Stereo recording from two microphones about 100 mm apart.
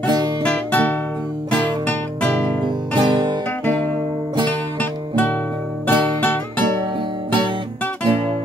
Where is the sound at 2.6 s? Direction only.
50° right (ahead or behind).